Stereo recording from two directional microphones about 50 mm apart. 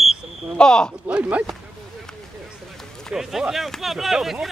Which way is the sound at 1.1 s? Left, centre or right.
Right.